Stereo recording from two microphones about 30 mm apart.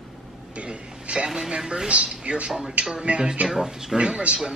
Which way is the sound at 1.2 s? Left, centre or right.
Centre.